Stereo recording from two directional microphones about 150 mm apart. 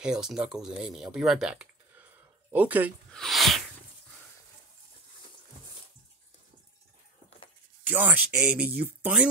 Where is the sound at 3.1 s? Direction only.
Centre (ahead or behind).